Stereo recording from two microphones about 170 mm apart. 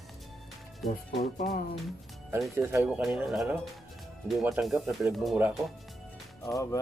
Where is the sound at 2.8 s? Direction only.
5° right (ahead or behind).